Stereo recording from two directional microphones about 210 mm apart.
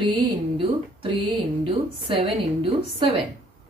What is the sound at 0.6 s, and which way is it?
Speech, 25° right (ahead or behind).